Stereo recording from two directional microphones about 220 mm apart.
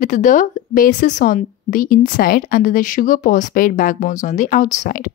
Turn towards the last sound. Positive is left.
turn(degrees=35)  # may be behind; listen again after turning